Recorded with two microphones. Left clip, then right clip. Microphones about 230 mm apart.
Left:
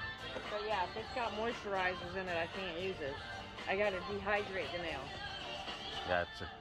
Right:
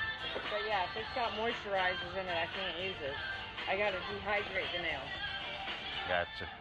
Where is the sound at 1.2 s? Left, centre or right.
Left.